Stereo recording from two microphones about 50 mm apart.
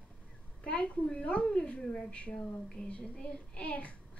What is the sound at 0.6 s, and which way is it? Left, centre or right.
A child's voice, left.